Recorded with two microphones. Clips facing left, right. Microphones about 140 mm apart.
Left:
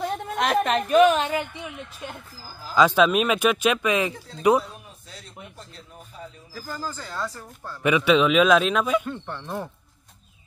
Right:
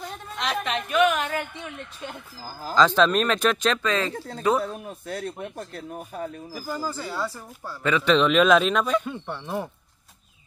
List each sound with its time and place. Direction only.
0.0 s speech: 50° left (ahead or behind); by 1.4 s 25° left (ahead or behind)
1.5 s speech: 10° left (ahead or behind)
4.8 s speech: 55° right (ahead or behind)
6.5 s speech: 10° right (ahead or behind)
7.8 s a man's voice: 10° left (ahead or behind)
9.1 s speech: 10° right (ahead or behind)